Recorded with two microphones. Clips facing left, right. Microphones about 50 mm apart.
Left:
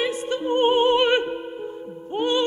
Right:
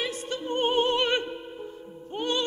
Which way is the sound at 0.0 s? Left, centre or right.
Left.